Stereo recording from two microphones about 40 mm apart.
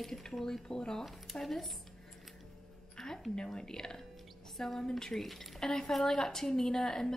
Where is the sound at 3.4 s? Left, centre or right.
Centre.